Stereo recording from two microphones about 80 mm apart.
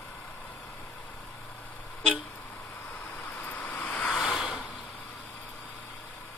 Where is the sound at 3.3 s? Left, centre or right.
Left.